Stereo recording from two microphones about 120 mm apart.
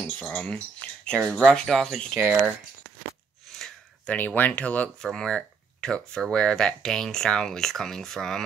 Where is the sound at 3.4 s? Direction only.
5° left (ahead or behind).